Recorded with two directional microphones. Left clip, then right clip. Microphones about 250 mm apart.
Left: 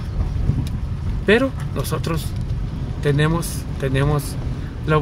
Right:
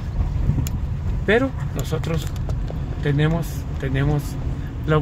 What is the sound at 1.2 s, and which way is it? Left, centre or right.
A man's voice, centre.